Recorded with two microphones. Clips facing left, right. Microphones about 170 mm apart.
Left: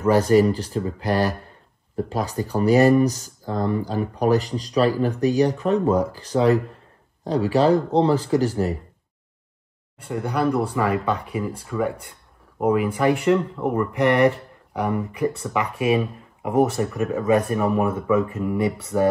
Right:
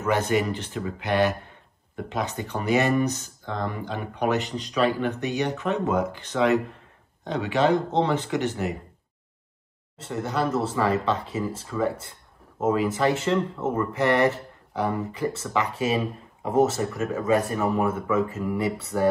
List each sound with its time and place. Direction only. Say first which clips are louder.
0.0 s speech: left 7 dB; 35° left (ahead or behind)
9.9 s speech: left 2 dB; 15° left (ahead or behind)